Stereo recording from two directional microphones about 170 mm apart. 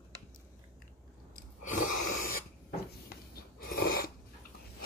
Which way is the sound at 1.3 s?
50° left (ahead or behind).